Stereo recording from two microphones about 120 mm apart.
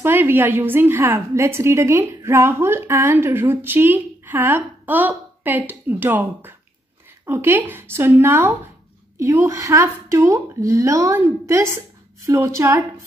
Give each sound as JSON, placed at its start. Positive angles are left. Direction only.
{"t": 0.0, "sound": "a woman's voice", "side_deg": -15}